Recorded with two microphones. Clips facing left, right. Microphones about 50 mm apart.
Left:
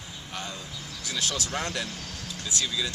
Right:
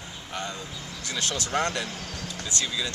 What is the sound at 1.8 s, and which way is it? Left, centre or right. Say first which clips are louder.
Speech: right 2 dB; centre.